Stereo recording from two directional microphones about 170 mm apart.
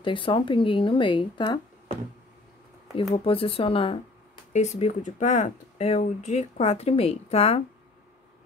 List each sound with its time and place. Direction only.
0.0 s speech: 30° left (ahead or behind)
3.3 s speech: 35° left (ahead or behind)